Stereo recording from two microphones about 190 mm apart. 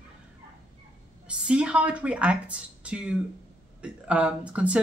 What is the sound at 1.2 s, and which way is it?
Speech, 5° right (ahead or behind).